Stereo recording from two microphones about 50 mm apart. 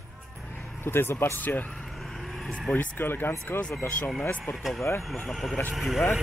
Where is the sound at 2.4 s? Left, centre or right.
Centre.